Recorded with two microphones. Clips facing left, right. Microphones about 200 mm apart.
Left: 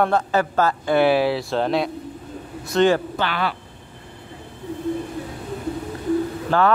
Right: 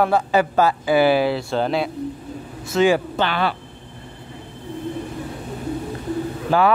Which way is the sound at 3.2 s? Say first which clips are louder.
Right 3 dB; 25° right (ahead or behind).